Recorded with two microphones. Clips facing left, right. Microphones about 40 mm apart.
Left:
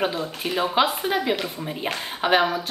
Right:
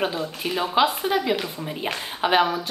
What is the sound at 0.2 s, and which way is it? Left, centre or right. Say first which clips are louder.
A woman's voice: left 1 dB; centre.